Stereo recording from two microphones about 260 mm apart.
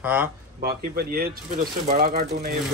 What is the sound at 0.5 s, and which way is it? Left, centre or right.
Speech, right.